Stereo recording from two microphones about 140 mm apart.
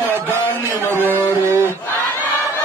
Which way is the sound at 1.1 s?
15° right (ahead or behind).